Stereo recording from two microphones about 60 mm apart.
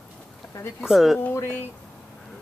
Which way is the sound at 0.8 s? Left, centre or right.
Centre.